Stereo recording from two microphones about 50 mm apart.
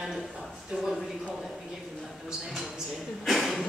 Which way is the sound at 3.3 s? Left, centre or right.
Centre.